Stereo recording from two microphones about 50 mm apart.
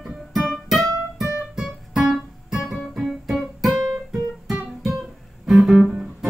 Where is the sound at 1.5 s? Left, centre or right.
Centre.